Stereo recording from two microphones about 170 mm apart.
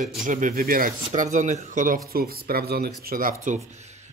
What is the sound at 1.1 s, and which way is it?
Speech, 45° right (ahead or behind).